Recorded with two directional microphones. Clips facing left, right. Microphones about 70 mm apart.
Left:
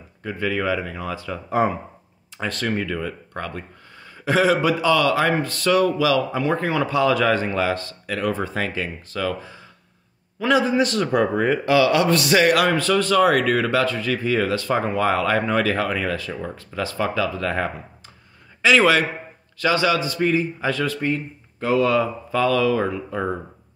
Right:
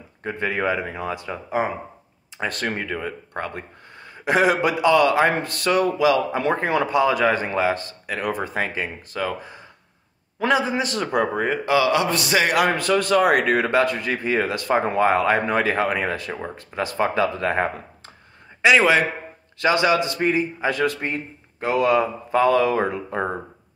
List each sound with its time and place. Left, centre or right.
0.2 s speech: right
2.4 s speech: right
10.8 s a man's voice: centre